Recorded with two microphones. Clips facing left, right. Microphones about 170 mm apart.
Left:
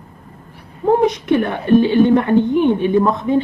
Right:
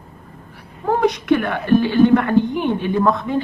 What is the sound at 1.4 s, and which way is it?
A woman's voice, 20° left (ahead or behind).